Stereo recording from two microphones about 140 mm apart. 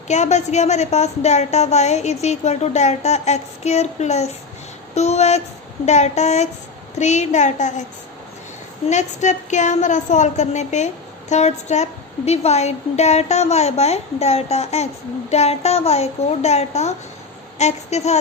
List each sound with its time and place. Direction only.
0.1 s a woman's voice: 55° left (ahead or behind)
8.8 s a woman's voice: 55° left (ahead or behind)